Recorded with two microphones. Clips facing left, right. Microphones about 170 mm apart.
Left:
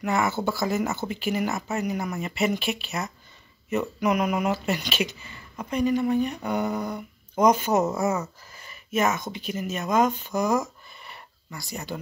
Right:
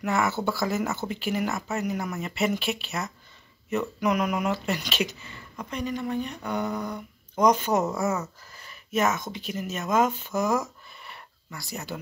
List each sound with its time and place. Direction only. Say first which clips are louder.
0.0 s speech: left 1 dB; centre (ahead or behind)